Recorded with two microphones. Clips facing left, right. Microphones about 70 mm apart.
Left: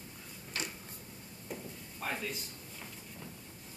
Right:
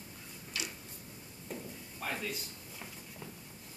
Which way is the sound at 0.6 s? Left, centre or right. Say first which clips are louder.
Left 1 dB; left.